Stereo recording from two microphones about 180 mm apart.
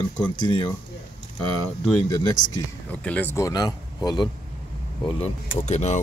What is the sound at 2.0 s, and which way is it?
Speech, 15° left (ahead or behind).